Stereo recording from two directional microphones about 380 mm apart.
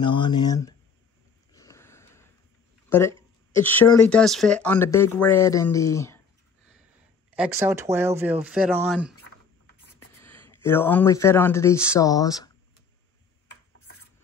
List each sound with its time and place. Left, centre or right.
0.0 s speech: centre
1.5 s a sound: centre
2.9 s speech: centre
7.2 s speech: centre